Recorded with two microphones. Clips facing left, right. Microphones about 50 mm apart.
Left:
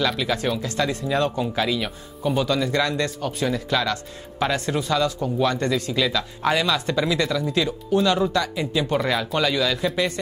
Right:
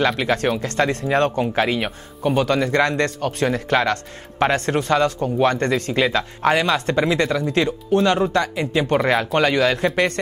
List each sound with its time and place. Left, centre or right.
0.2 s speech: right